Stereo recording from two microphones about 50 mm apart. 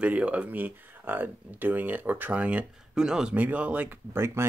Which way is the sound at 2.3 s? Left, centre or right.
Right.